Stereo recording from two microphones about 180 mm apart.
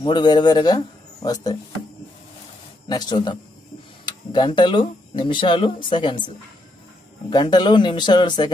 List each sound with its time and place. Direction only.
0.0 s speech: 25° left (ahead or behind)
2.9 s speech: 25° left (ahead or behind)